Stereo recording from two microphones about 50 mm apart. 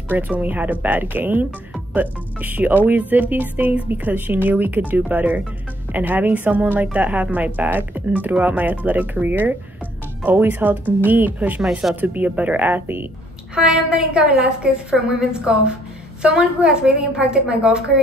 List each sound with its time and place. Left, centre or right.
0.4 s speech: right
13.6 s a woman's voice: centre